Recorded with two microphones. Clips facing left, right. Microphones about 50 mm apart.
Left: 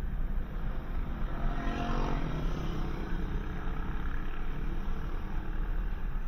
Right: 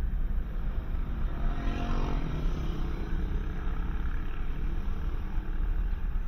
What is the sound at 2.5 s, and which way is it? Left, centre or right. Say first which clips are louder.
Vehicle: even; left.